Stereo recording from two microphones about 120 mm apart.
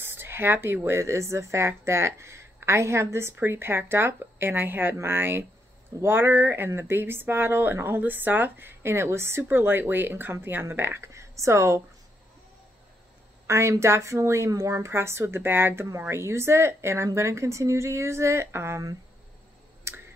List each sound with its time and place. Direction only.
0.0 s speech: 20° right (ahead or behind)
13.5 s speech: 25° right (ahead or behind)
19.9 s a sound: 20° right (ahead or behind)